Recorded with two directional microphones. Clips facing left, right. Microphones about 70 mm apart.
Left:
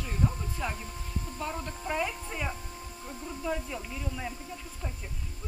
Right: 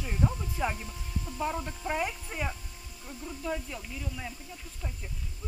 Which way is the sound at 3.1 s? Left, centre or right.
Centre.